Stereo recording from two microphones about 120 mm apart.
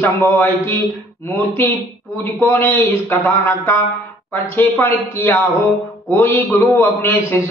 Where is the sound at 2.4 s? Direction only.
20° left (ahead or behind).